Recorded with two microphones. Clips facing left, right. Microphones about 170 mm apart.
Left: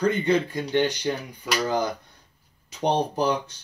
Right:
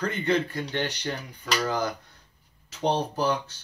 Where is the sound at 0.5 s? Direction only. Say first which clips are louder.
Left 6 dB; 15° left (ahead or behind).